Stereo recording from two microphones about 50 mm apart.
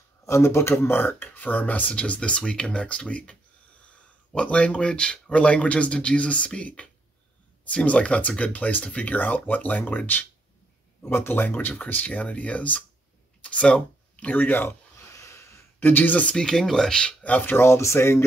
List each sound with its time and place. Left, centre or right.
0.2 s speech: left
0.9 s speech: left
4.4 s speech: left
11.1 s speech: left
15.1 s wheeze: left
15.8 s speech: left
16.3 s speech: centre
17.2 s speech: left
17.5 s speech: left
17.7 s speech: left